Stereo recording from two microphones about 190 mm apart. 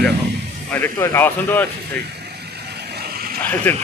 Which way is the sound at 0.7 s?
10° left (ahead or behind).